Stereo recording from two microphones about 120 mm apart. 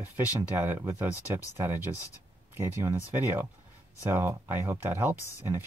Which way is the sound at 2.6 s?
20° right (ahead or behind).